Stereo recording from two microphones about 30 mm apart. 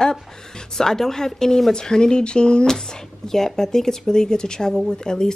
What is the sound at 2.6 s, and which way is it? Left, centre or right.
A woman's voice, centre.